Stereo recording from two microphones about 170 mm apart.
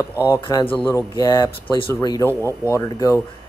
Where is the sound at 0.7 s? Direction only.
10° left (ahead or behind).